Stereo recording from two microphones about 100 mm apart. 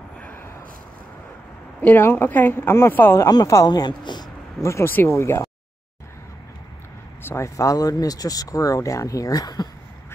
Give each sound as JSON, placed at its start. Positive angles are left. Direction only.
{"t": 1.8, "sound": "speech", "side_deg": 20}
{"t": 3.2, "sound": "speech", "side_deg": 35}
{"t": 4.6, "sound": "speech", "side_deg": 30}
{"t": 7.2, "sound": "speech", "side_deg": 30}